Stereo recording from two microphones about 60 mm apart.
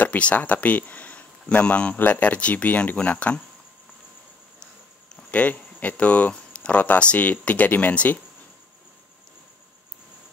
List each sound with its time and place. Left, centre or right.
0.0 s speech: left
5.1 s speech: left